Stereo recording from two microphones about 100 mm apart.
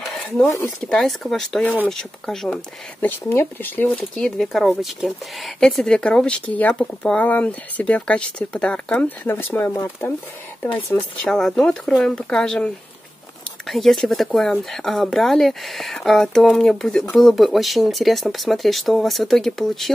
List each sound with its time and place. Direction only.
0.8 s speech: 5° left (ahead or behind)
3.0 s speech: 25° left (ahead or behind)
3.9 s speech: 5° left (ahead or behind)